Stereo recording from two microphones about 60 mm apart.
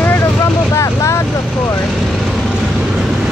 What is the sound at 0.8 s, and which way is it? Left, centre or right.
Vehicle, left.